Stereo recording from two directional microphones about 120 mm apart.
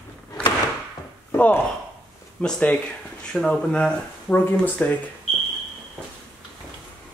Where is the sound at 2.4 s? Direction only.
10° left (ahead or behind).